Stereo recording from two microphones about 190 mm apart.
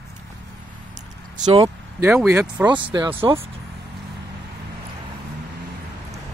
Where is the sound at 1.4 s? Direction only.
20° right (ahead or behind).